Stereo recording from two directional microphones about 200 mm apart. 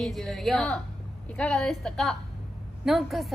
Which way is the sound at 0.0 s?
Centre (ahead or behind).